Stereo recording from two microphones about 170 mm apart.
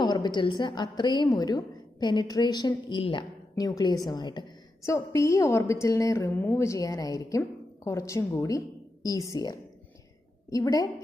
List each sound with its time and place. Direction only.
0.0 s a woman's voice: 25° left (ahead or behind)